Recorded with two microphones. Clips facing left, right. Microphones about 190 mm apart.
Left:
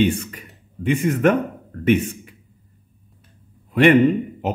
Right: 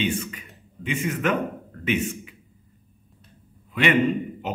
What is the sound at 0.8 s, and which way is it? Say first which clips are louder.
A man's voice: left 7 dB; 50° left (ahead or behind).